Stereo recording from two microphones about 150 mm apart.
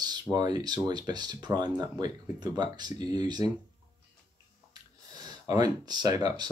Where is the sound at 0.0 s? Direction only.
25° right (ahead or behind).